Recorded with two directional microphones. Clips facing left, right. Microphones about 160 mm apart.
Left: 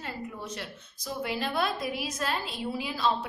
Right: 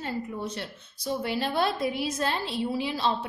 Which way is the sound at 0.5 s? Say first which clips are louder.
Right 3 dB; 30° right (ahead or behind).